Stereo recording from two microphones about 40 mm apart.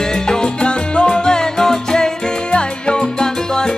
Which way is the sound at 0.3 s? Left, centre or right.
Left.